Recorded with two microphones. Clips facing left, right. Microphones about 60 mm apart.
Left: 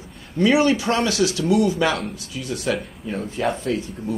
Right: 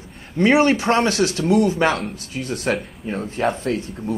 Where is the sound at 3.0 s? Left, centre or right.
Right.